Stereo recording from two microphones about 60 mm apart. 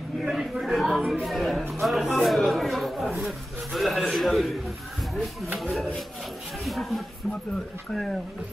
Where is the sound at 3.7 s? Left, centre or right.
Centre.